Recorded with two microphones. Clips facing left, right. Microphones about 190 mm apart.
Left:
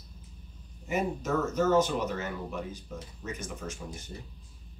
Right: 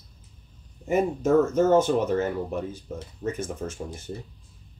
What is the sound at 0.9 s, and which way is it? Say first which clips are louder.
Speech: right 8 dB; 50° right (ahead or behind).